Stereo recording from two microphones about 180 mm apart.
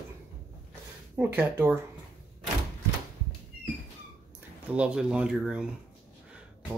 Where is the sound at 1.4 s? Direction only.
10° right (ahead or behind).